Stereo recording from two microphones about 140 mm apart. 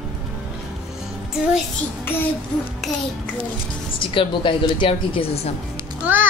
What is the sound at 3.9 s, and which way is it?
A woman's voice, 35° left (ahead or behind).